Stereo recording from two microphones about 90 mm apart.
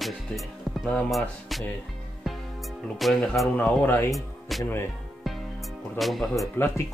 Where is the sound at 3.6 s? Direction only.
15° left (ahead or behind).